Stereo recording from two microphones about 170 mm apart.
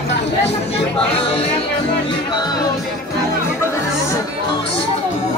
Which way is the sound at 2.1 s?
25° left (ahead or behind).